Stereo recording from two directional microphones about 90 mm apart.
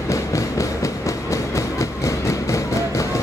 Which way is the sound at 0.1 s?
35° left (ahead or behind).